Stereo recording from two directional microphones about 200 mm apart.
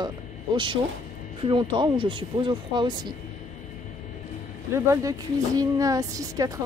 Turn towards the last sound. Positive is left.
turn(degrees=-15)  # may be behind; listen again after turning